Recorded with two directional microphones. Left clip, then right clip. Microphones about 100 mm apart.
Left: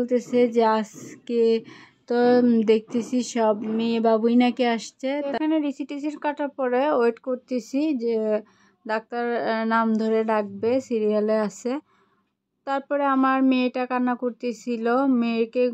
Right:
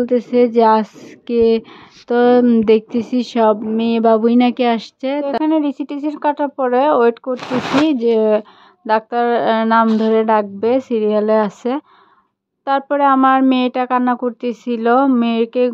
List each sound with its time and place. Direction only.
0.0 s speech: 35° right (ahead or behind)